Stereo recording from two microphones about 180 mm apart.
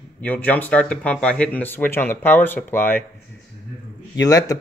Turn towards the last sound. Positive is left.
turn(degrees=20)  # may be behind; listen again after turning